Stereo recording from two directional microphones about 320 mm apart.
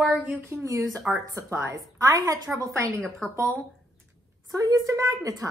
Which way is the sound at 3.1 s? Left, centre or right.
Centre.